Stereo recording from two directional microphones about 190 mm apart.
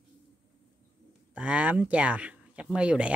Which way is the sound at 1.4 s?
5° right (ahead or behind).